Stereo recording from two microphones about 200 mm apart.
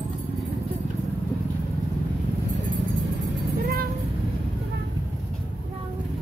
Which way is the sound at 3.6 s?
45° right (ahead or behind).